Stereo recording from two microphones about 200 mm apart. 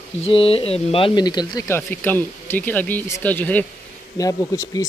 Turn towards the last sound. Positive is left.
turn(degrees=15)  # may be behind; listen again after turning